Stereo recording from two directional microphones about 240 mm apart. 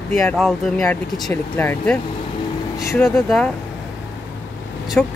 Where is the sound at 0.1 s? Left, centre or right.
Centre.